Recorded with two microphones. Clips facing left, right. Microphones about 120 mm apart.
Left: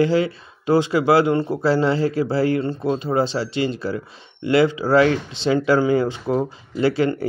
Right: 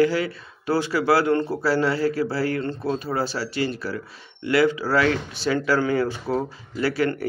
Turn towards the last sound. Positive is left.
turn(degrees=25)  # may be behind; listen again after turning